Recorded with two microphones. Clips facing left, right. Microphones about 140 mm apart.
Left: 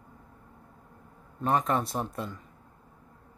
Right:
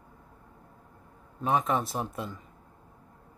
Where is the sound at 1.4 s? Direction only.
Centre (ahead or behind).